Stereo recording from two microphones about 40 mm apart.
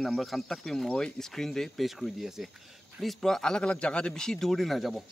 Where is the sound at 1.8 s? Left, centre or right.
Centre.